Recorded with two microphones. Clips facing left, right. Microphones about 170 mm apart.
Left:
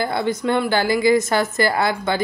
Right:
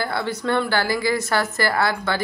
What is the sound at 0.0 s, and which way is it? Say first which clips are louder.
A woman's voice: left 4 dB; 20° left (ahead or behind).